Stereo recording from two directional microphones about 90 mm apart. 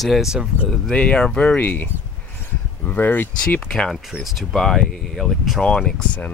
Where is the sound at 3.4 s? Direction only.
10° left (ahead or behind).